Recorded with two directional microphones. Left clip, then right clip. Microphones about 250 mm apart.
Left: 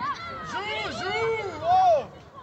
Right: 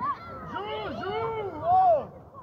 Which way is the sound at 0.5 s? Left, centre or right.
Left.